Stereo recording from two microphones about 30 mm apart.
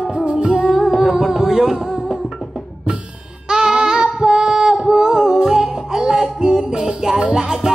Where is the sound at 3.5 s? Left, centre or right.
Right.